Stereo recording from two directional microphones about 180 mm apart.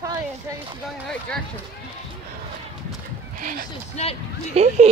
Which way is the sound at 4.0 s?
40° left (ahead or behind).